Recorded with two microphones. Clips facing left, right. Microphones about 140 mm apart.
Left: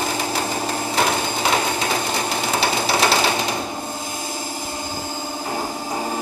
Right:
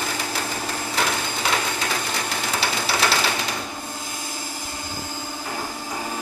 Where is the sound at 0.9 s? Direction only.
25° left (ahead or behind).